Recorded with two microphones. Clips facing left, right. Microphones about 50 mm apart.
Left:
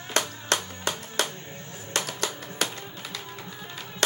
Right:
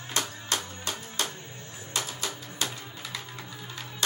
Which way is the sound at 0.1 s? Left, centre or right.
Left.